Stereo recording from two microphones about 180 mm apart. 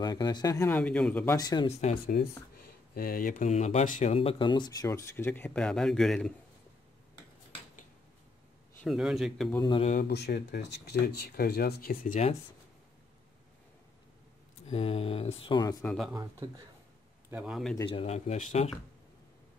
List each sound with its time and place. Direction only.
0.0 s speech: 20° left (ahead or behind)
0.7 s speech: 5° left (ahead or behind)
1.7 s speech: 35° left (ahead or behind)
2.9 s speech: 55° left (ahead or behind); by 6.3 s 5° left (ahead or behind)
8.8 s a man's voice: centre (ahead or behind)
9.7 s speech: 35° left (ahead or behind)
10.0 s speech: 65° left (ahead or behind)
14.7 s speech: 35° left (ahead or behind)
15.8 s a man's voice: 5° left (ahead or behind)
16.2 s speech: 20° right (ahead or behind)
17.3 s a man's voice: 5° right (ahead or behind)
17.8 s speech: 35° left (ahead or behind)